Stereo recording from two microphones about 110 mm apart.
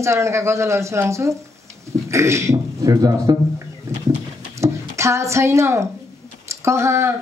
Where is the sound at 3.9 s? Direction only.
25° right (ahead or behind).